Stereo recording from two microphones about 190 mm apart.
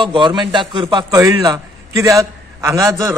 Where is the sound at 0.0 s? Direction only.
25° right (ahead or behind).